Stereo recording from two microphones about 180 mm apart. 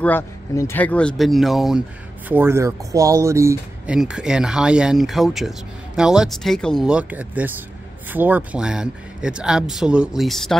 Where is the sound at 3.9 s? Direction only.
5° right (ahead or behind).